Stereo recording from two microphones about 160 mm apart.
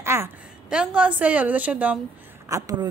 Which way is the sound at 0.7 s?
5° right (ahead or behind).